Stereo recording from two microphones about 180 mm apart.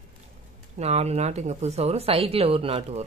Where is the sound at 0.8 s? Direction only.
35° right (ahead or behind).